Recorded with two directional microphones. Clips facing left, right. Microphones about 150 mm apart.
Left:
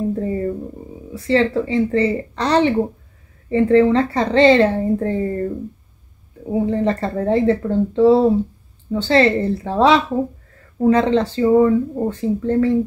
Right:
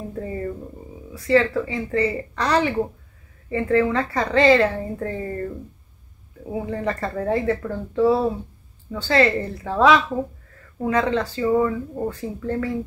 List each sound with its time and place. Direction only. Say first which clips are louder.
0.1 s speech: left 7 dB; 30° left (ahead or behind)
6.5 s speech: left 7 dB; 30° left (ahead or behind)